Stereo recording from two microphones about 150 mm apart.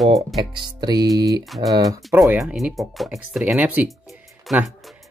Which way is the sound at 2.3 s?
Centre (ahead or behind).